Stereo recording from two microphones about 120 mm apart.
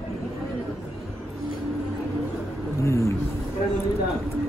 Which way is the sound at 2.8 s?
25° left (ahead or behind).